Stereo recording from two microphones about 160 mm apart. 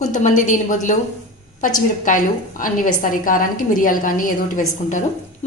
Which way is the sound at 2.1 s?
55° left (ahead or behind).